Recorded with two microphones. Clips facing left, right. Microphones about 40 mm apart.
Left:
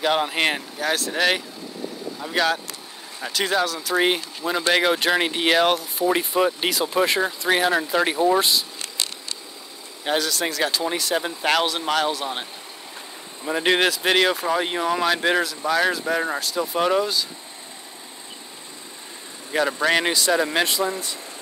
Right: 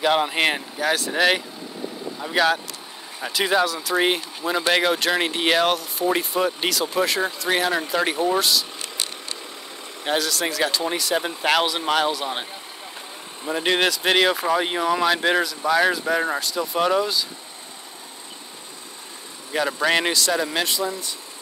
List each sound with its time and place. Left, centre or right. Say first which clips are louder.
0.0 s speech: right 1 dB; centre
6.7 s speech: left 1 dB; centre
7.4 s speech: left 3 dB; centre
10.0 s speech: even; centre
13.5 s speech: left 1 dB; centre
19.5 s speech: left 1 dB; centre
20.2 s speech: left 2 dB; centre
20.6 s speech: left 2 dB; left